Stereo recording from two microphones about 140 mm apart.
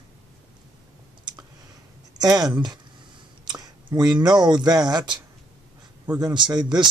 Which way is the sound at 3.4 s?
30° right (ahead or behind).